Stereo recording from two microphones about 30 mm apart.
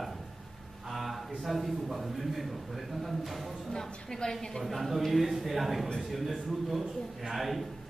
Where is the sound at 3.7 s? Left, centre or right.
Centre.